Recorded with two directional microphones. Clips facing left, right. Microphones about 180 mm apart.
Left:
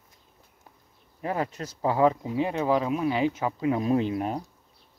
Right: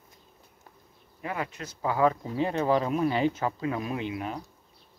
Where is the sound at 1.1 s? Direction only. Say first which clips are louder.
Left 4 dB; 35° left (ahead or behind).